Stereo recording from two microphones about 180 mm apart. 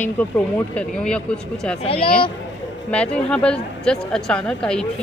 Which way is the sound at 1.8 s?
30° left (ahead or behind).